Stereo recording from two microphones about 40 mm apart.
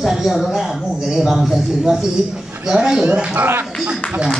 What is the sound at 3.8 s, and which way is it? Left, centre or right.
Speech, right.